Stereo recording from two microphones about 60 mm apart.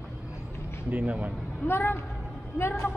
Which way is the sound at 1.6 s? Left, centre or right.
Left.